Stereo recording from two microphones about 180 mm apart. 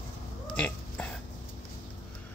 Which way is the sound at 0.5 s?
5° left (ahead or behind).